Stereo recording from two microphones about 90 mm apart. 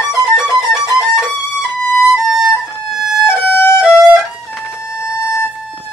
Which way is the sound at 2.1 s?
5° right (ahead or behind).